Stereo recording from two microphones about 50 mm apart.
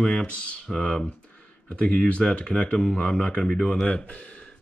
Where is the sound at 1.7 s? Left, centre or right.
Left.